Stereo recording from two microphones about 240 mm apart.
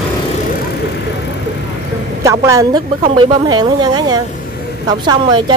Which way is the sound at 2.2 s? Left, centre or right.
Centre.